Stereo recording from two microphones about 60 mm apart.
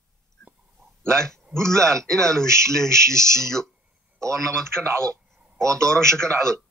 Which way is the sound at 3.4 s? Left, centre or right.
Centre.